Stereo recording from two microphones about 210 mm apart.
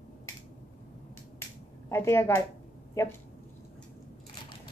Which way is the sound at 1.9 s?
10° left (ahead or behind).